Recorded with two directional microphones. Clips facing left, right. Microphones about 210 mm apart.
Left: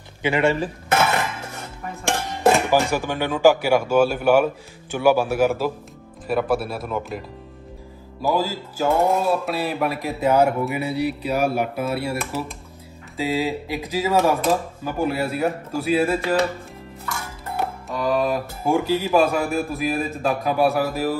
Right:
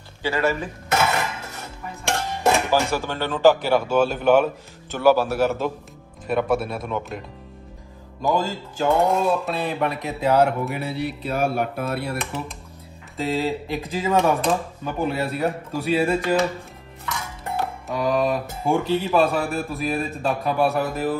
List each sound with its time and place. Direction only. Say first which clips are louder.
0.2 s speech: left 3 dB; 25° left (ahead or behind)
2.7 s speech: left 2 dB; 15° left (ahead or behind)
17.5 s speech: even; centre (ahead or behind)